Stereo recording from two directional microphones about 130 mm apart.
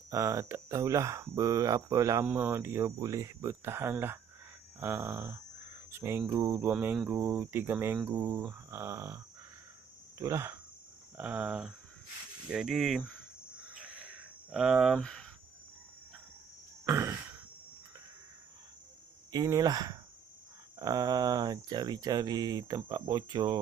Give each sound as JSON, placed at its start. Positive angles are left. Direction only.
{"t": 0.1, "sound": "speech", "side_deg": -20}
{"t": 2.2, "sound": "cricket", "side_deg": -15}
{"t": 5.9, "sound": "speech", "side_deg": -20}
{"t": 6.7, "sound": "cricket", "side_deg": -15}
{"t": 10.1, "sound": "speech", "side_deg": -20}
{"t": 11.1, "sound": "cricket", "side_deg": -10}
{"t": 12.4, "sound": "speech", "side_deg": -5}
{"t": 13.7, "sound": "a sound", "side_deg": -5}
{"t": 15.0, "sound": "speech", "side_deg": 5}
{"t": 16.8, "sound": "a sound", "side_deg": -20}
{"t": 19.3, "sound": "speech", "side_deg": -30}